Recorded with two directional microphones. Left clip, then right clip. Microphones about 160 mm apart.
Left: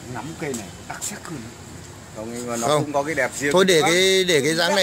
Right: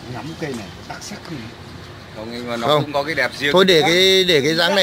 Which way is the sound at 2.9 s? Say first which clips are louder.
Right 2 dB; 30° left (ahead or behind).